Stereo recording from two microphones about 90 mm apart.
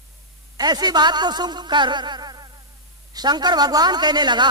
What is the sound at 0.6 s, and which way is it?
A woman's voice, 50° right (ahead or behind).